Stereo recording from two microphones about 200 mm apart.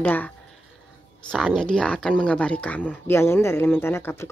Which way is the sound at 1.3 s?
5° left (ahead or behind).